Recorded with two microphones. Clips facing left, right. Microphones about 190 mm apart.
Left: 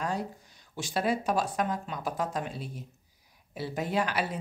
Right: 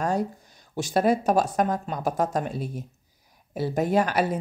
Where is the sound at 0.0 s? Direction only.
45° right (ahead or behind).